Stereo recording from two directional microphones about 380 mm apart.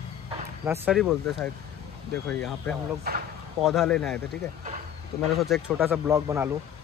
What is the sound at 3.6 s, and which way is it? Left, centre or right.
Speech, centre.